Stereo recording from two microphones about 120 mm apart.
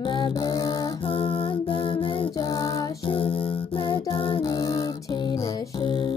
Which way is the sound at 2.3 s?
35° left (ahead or behind).